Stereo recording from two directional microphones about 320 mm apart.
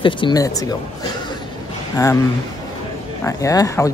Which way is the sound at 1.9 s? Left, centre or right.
Centre.